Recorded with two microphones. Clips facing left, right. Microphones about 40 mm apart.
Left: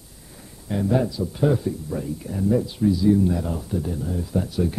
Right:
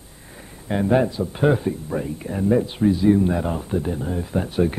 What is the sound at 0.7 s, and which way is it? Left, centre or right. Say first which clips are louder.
Speech: right 3 dB; right.